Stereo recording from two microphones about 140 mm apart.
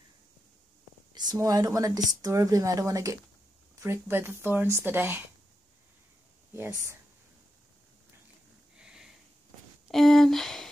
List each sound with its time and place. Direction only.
1.1 s speech: 25° right (ahead or behind)
6.5 s speech: 20° right (ahead or behind)
8.7 s sniff: 5° right (ahead or behind)
9.8 s speech: centre (ahead or behind)